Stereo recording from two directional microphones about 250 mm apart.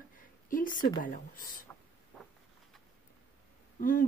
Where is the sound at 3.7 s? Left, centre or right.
Left.